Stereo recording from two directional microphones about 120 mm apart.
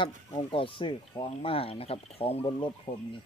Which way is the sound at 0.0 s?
45° left (ahead or behind).